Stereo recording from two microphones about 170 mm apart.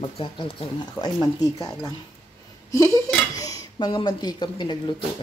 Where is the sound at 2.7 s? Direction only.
15° left (ahead or behind).